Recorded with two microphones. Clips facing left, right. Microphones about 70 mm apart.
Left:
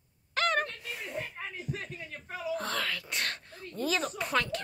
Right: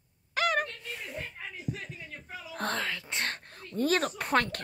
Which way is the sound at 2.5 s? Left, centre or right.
Right.